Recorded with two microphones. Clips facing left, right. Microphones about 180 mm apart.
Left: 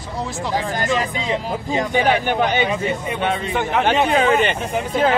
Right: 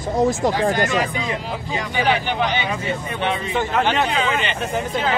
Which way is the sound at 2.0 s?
50° left (ahead or behind).